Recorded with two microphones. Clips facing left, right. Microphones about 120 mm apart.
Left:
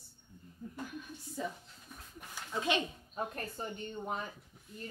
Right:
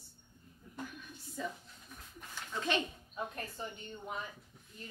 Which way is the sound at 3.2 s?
40° left (ahead or behind).